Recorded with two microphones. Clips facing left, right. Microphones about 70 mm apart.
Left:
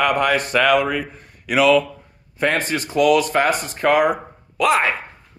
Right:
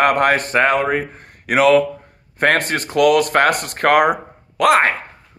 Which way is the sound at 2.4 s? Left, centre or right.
Right.